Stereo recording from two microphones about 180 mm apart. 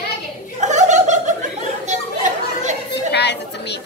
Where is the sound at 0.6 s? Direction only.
40° right (ahead or behind).